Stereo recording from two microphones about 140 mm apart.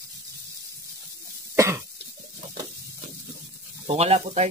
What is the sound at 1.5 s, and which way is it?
Cough, 20° right (ahead or behind).